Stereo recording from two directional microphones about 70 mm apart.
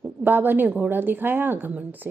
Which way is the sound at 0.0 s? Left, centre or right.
Right.